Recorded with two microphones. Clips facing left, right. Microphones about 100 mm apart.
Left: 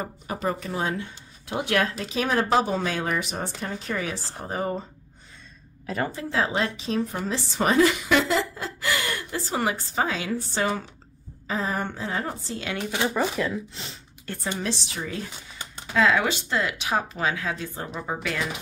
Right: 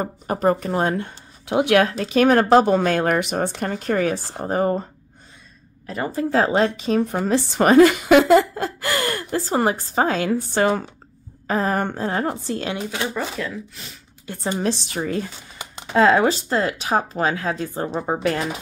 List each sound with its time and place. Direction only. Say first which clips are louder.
0.0 s speech: right 8 dB; 45° right (ahead or behind)
6.1 s speech: right 10 dB; 45° right (ahead or behind)
12.9 s speech: left 1 dB; 10° left (ahead or behind)
14.5 s speech: right 7 dB; 45° right (ahead or behind)
15.9 s speech: right 6 dB; 40° right (ahead or behind)